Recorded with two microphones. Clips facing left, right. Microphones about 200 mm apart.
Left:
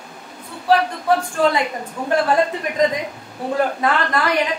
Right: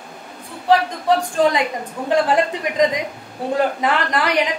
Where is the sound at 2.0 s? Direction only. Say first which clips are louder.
Even; 15° right (ahead or behind).